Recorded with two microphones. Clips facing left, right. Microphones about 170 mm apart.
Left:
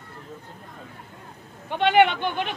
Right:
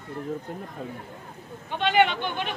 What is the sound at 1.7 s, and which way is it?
Speech, 55° left (ahead or behind).